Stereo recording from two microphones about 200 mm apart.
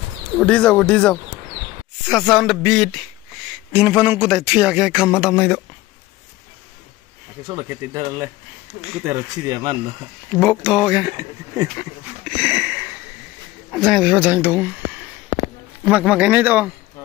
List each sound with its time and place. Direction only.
0.4 s speech: 5° left (ahead or behind)
7.4 s a man's voice: 15° right (ahead or behind)
10.3 s speech: centre (ahead or behind)
11.1 s a man's voice: 15° right (ahead or behind)
12.4 s a sound: 5° right (ahead or behind)
13.7 s a man's voice: 5° right (ahead or behind)